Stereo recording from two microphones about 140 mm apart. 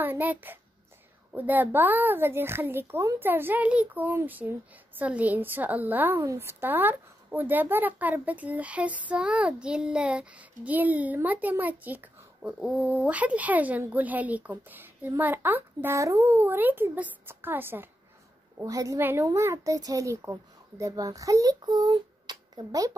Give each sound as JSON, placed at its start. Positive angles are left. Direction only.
{"t": 0.0, "sound": "a woman's voice", "side_deg": -15}